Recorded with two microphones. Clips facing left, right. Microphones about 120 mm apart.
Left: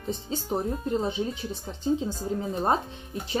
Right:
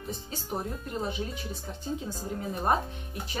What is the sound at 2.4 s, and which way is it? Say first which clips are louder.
Speech: left 1 dB; 25° left (ahead or behind).